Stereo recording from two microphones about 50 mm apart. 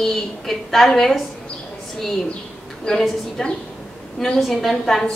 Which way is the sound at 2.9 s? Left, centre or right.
Centre.